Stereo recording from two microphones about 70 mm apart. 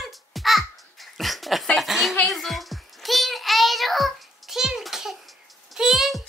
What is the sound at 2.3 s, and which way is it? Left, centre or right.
Child singing, centre.